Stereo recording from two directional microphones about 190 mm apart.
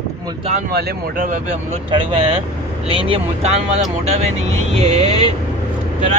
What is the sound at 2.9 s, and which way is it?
Speech, 30° right (ahead or behind).